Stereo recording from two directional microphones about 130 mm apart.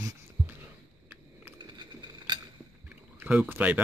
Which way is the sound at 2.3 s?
35° right (ahead or behind).